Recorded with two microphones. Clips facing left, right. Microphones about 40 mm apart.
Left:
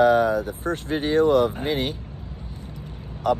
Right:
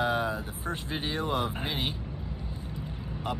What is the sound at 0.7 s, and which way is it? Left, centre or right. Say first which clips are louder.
Speech: left 6 dB; left.